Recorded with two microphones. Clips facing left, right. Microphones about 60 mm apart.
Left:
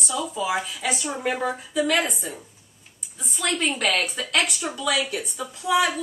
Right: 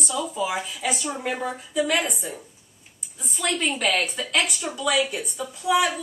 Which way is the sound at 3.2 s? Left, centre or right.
Centre.